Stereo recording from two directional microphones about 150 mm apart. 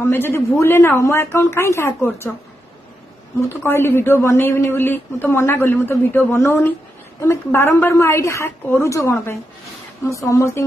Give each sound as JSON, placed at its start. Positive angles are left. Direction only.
{"t": 0.0, "sound": "a man's voice", "side_deg": 15}
{"t": 3.3, "sound": "a man's voice", "side_deg": 15}